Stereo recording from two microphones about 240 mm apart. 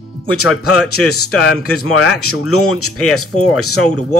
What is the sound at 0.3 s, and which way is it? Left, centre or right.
Speech, left.